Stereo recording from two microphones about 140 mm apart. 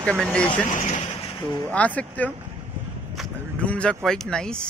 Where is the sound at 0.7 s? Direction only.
65° left (ahead or behind).